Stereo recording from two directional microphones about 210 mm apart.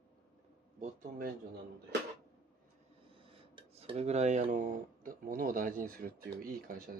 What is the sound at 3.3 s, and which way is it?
Speech, 25° right (ahead or behind).